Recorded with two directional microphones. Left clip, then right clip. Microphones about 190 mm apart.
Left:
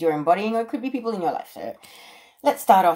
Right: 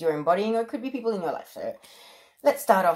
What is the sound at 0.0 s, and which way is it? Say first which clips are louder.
Speech: left 3 dB; 25° right (ahead or behind).